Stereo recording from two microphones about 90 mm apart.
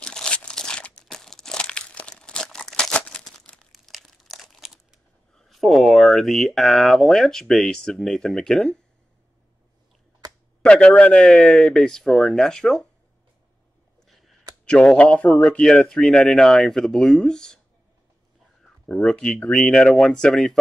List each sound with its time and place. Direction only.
0.0 s crumpling: 10° left (ahead or behind)
5.3 s speech: centre (ahead or behind)
10.6 s speech: 10° left (ahead or behind)
14.0 s a sound: centre (ahead or behind)
14.6 s speech: 5° left (ahead or behind)
18.9 s speech: 10° left (ahead or behind)